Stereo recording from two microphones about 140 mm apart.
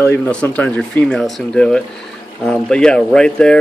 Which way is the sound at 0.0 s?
15° left (ahead or behind).